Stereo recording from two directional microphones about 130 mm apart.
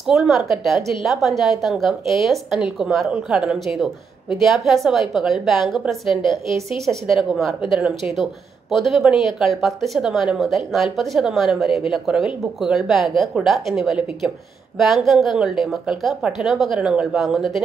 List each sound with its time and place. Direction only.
0.0 s a woman's voice: centre (ahead or behind)